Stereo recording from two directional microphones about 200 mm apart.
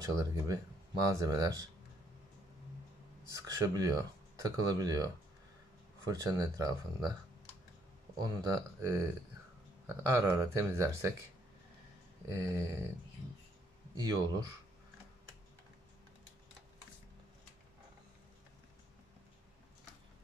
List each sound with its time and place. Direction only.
0.0 s speech: 15° right (ahead or behind)
3.3 s speech: 15° right (ahead or behind)
8.2 s speech: 20° right (ahead or behind)
10.2 s speech: 15° right (ahead or behind)
12.3 s speech: 15° right (ahead or behind)
13.9 s speech: 20° right (ahead or behind)